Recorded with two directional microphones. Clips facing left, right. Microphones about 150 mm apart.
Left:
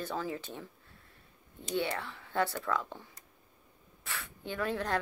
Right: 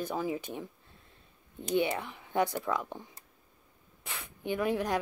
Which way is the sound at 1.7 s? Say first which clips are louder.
Right 4 dB; 15° right (ahead or behind).